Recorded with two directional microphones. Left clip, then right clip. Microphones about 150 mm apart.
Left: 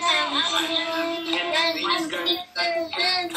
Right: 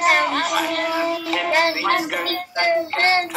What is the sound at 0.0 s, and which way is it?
Music, 45° right (ahead or behind).